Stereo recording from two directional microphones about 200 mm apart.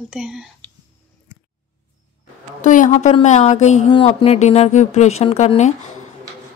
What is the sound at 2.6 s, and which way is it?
Speech, 40° left (ahead or behind).